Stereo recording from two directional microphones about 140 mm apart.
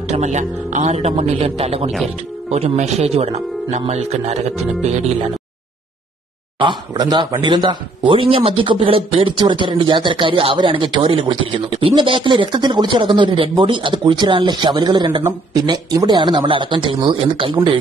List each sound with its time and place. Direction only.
0.1 s speech: 55° right (ahead or behind)
6.6 s speech: 30° right (ahead or behind)